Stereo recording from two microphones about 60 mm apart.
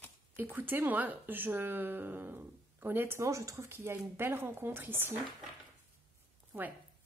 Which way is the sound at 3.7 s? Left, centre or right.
Right.